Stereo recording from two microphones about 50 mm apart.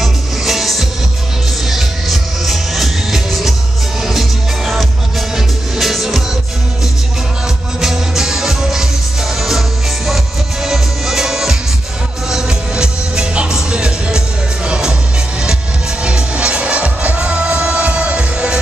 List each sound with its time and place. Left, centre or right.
0.0 s music: centre
7.8 s music: centre
16.0 s music: right